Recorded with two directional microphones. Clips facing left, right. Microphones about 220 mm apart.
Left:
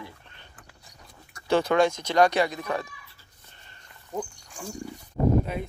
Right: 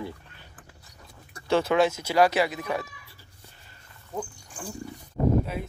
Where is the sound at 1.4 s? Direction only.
Centre (ahead or behind).